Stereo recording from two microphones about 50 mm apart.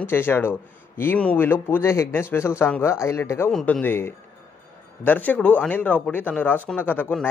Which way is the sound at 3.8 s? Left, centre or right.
Left.